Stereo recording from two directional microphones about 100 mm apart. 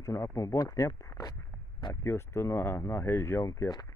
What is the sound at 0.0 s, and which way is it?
Speech, 35° left (ahead or behind).